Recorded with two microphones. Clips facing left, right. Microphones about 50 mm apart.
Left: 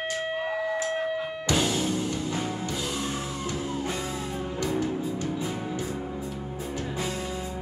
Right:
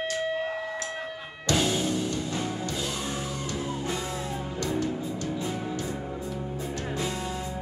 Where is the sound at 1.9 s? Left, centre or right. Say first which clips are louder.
Even; centre.